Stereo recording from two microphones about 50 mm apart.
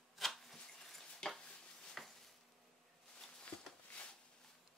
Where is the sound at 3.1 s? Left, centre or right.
Centre.